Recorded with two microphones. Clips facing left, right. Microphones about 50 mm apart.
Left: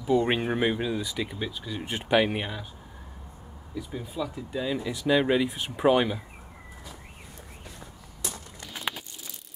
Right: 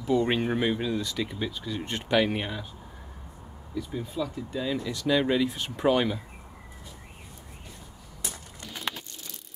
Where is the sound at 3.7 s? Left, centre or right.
Centre.